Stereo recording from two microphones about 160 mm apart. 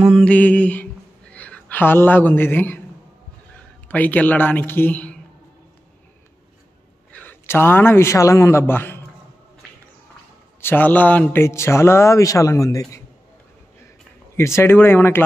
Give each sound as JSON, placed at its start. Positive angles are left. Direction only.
{"t": 0.2, "sound": "speech", "side_deg": 10}
{"t": 3.9, "sound": "a man's voice", "side_deg": 10}
{"t": 7.1, "sound": "a man's voice", "side_deg": 10}
{"t": 10.6, "sound": "a man's voice", "side_deg": 10}
{"t": 14.3, "sound": "a man's voice", "side_deg": 15}